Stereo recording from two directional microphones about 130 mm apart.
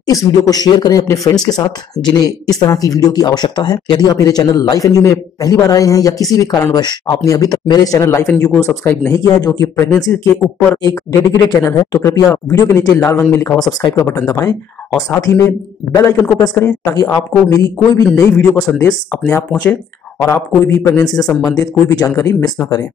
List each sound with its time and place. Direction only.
0.0 s speech: 30° left (ahead or behind)
8.3 s speech: 10° left (ahead or behind)
13.6 s speech: 30° left (ahead or behind)
14.2 s speech: 20° left (ahead or behind)
16.0 s speech: 25° left (ahead or behind)
19.5 s speech: 10° left (ahead or behind)